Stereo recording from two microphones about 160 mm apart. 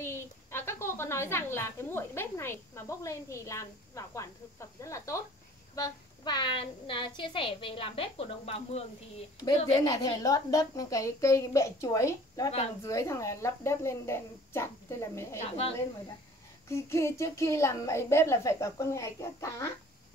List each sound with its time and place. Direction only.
0.0 s a woman's voice: 15° left (ahead or behind); by 8.8 s 40° left (ahead or behind)
9.8 s a woman's voice: 25° left (ahead or behind)
16.6 s a woman's voice: 15° left (ahead or behind)